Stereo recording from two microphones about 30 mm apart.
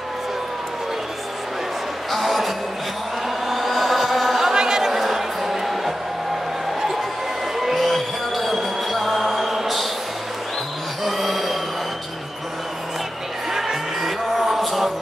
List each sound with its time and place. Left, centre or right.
2.0 s music: centre
3.4 s vehicle: centre
4.6 s a sound: centre
5.0 s music: centre
7.5 s music: centre
11.1 s a sound: centre
13.5 s crowd: centre
14.3 s music: centre